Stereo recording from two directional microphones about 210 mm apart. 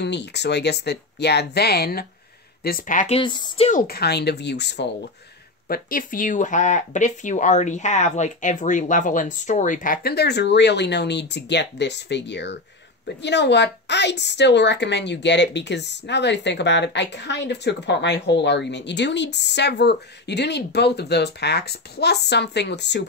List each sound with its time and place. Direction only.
0.0 s speech: 55° left (ahead or behind); by 3.2 s 40° left (ahead or behind)
3.2 s speech: 20° left (ahead or behind)
3.8 s speech: 50° left (ahead or behind)
5.7 s a woman's voice: 40° left (ahead or behind)